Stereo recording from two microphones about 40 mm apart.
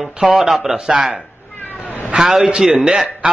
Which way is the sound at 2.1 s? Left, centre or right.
Centre.